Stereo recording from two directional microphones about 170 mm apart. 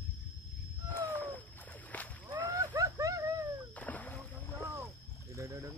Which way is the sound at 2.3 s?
20° right (ahead or behind).